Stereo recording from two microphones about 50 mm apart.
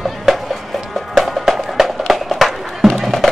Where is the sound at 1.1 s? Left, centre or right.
Centre.